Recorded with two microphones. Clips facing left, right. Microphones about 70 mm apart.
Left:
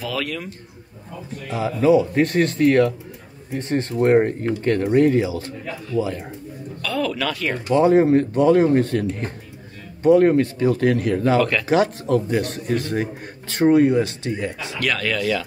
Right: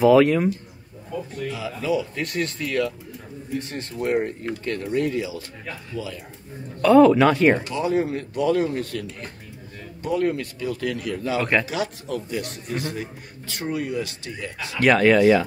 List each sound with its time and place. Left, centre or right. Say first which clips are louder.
0.0 s speech: right 12 dB; right
1.5 s a man's voice: left 9 dB; left
6.8 s speech: right 11 dB; right
7.7 s a man's voice: left 9 dB; left
14.8 s speech: right 8 dB; right